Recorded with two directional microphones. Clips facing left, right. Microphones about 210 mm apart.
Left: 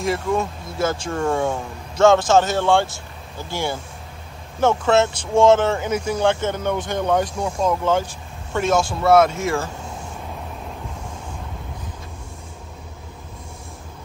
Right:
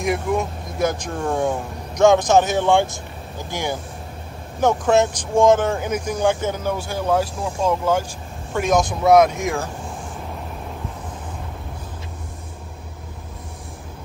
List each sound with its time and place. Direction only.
0.0 s speech: 15° right (ahead or behind)
2.0 s speech: 15° right (ahead or behind)